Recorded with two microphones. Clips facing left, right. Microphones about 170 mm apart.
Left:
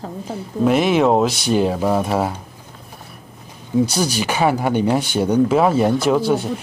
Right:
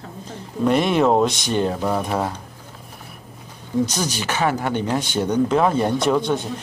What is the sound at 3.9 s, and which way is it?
Speech, 10° left (ahead or behind).